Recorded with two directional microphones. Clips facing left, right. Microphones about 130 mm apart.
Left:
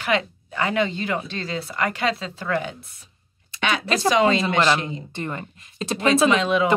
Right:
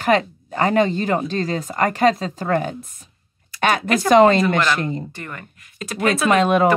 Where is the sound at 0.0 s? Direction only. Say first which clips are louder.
Right 6 dB; 45° right (ahead or behind).